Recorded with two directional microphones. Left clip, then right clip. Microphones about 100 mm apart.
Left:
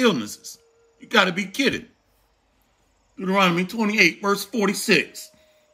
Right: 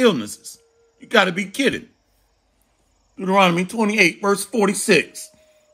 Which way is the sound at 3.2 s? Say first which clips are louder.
Right 4 dB; 15° right (ahead or behind).